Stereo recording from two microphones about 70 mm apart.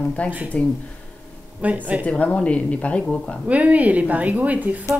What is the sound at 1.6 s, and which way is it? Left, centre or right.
Speech, right.